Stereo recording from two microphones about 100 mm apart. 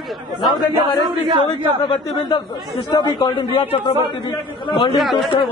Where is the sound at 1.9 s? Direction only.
45° left (ahead or behind).